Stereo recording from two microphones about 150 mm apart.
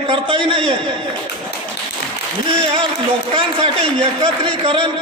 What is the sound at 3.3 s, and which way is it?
A man's voice, 35° right (ahead or behind).